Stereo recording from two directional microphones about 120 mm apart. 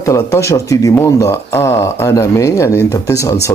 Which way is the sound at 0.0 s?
25° left (ahead or behind).